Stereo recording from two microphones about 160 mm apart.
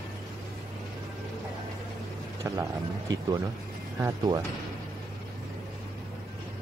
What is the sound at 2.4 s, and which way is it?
A man's voice, 20° right (ahead or behind).